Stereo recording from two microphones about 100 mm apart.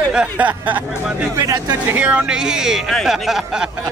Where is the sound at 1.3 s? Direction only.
40° right (ahead or behind).